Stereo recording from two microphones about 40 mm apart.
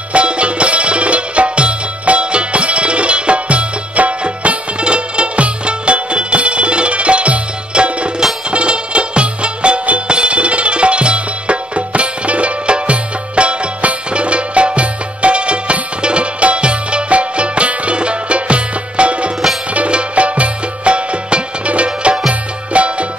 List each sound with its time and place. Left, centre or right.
0.1 s music: right